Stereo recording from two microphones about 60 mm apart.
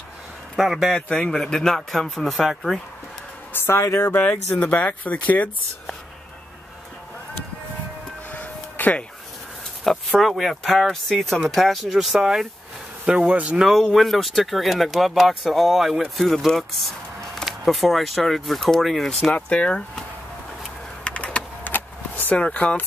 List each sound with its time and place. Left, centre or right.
0.6 s speech: centre
0.9 s speech: centre
3.5 s speech: left
4.2 s speech: left
8.3 s a sound: left
9.8 s speech: centre; by 13.6 s right
13.6 s speech: centre
19.3 s speech: centre
21.0 s power windows: centre
21.6 s power windows: left
22.4 s speech: left